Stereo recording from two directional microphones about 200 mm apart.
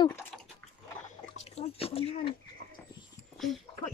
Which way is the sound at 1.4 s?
30° left (ahead or behind).